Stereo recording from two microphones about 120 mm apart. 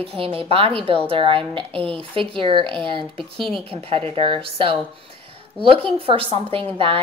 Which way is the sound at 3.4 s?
5° left (ahead or behind).